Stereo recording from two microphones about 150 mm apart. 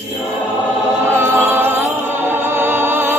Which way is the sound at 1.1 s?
20° right (ahead or behind).